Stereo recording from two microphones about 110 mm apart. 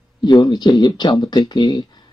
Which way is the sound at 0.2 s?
40° left (ahead or behind).